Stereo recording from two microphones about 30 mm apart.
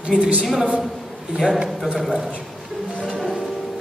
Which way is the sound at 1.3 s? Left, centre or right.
Centre.